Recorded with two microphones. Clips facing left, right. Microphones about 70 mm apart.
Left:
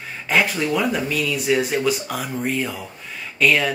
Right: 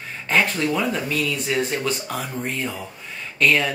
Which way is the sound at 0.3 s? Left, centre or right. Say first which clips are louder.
Left 1 dB; centre.